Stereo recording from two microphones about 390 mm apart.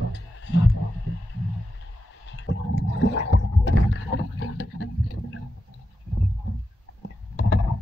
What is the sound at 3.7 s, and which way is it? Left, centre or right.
Boat, left.